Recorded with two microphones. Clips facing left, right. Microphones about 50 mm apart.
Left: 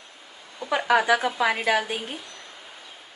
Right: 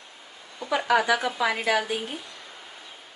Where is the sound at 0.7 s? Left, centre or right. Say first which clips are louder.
Left 2 dB; centre.